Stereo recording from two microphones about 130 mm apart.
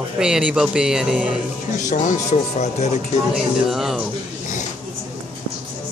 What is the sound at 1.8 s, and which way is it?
Speech, 75° left (ahead or behind).